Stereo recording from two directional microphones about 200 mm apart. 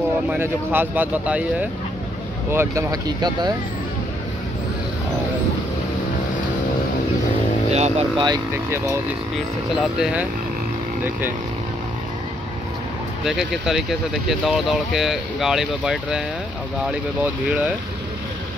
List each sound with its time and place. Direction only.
0.3 s speech: 10° right (ahead or behind)
7.7 s speech: 30° right (ahead or behind)
8.3 s speech: 15° right (ahead or behind)
13.2 s speech: centre (ahead or behind)